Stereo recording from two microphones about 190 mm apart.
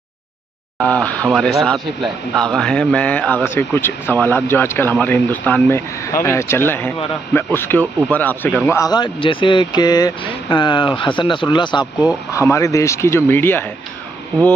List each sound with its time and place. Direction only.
0.8 s a man's voice: 5° left (ahead or behind)